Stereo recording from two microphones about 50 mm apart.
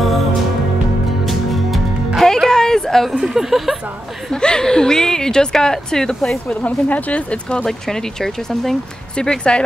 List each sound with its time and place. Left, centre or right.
1.2 s music: centre
2.2 s a sound: centre
3.2 s speech: centre
4.3 s speech: centre
6.5 s speech: left